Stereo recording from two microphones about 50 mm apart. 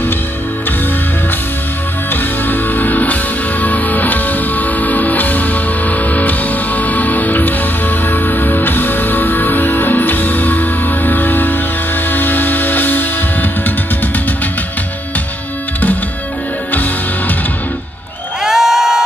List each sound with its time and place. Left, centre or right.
2.4 s music: left
18.4 s crowd: centre